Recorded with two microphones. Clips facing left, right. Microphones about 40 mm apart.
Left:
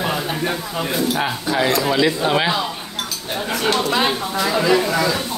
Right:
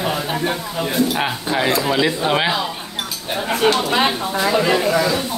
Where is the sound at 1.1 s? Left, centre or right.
Centre.